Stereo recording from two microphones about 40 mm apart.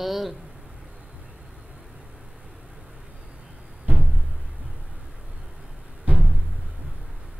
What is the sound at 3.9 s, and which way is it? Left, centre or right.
Music, right.